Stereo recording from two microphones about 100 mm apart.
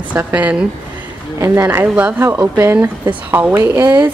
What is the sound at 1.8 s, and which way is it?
A woman's voice, 15° right (ahead or behind).